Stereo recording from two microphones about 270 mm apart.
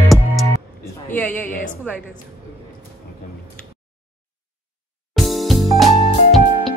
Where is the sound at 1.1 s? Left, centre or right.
Centre.